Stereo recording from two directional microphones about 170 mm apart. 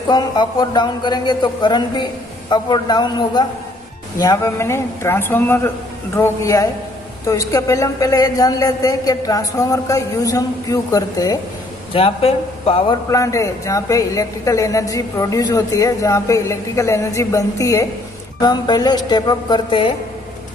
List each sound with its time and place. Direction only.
0.1 s a woman's voice: 25° left (ahead or behind)
11.9 s a man's voice: 35° left (ahead or behind)
13.1 s a woman's voice: 20° left (ahead or behind)